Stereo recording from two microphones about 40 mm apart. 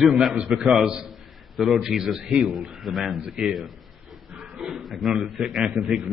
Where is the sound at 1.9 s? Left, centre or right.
Centre.